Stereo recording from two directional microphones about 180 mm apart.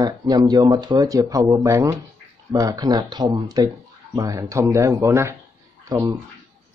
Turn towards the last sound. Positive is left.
turn(degrees=-15)  # may be behind; listen again after turning